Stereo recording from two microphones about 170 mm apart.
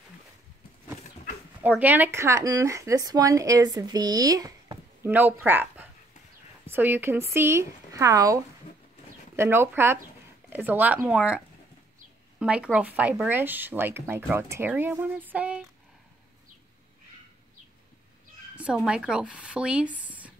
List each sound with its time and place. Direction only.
1.6 s speech: 10° right (ahead or behind)
9.4 s speech: 15° right (ahead or behind)
18.9 s speech: 5° right (ahead or behind)